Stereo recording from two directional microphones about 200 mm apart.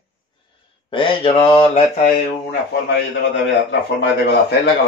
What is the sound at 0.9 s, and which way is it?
Mantra, 25° left (ahead or behind).